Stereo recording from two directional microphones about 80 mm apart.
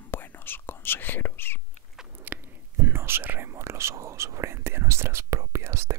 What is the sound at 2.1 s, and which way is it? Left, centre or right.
Speech, right.